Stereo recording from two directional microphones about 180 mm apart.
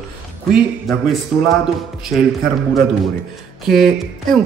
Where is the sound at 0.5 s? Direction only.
5° right (ahead or behind).